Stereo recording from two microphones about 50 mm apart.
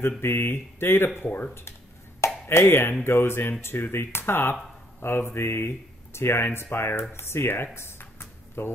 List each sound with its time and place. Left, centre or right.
0.2 s speech: left
2.1 s chopping: left
2.7 s music: left
3.6 s speech: left
7.2 s a sound: left